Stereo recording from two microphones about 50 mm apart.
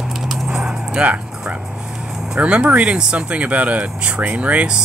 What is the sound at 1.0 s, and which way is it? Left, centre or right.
Music, right.